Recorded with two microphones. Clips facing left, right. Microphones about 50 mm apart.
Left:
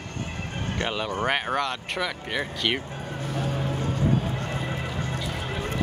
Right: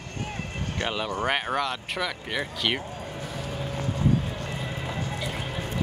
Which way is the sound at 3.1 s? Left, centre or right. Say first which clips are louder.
Left 8 dB; left.